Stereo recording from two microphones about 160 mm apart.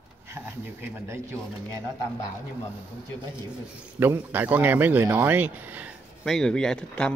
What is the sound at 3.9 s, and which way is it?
Speech, 15° right (ahead or behind).